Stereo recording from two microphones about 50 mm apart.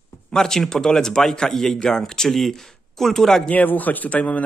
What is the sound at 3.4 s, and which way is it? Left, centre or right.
Speech, left.